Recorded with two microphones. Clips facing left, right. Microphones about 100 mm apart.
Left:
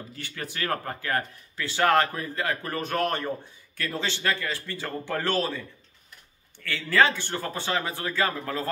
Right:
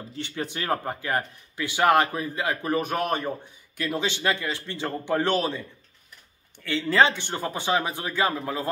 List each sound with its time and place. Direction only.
0.1 s speech: 25° right (ahead or behind)